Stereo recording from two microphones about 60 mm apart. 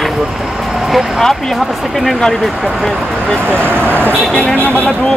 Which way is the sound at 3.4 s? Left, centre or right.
Right.